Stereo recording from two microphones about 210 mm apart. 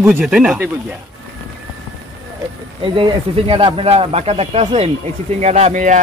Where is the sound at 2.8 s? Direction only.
20° right (ahead or behind).